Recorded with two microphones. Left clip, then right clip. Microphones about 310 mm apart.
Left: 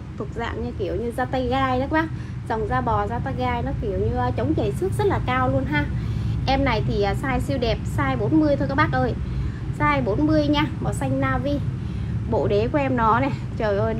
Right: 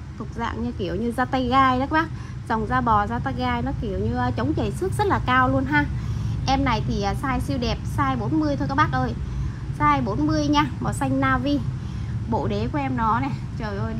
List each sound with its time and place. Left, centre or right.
0.4 s a woman's voice: right
12.3 s a woman's voice: centre